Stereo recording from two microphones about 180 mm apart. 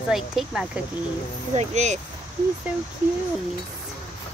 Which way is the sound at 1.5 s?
35° right (ahead or behind).